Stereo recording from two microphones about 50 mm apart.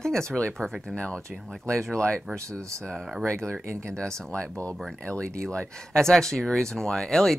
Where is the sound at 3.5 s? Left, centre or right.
Right.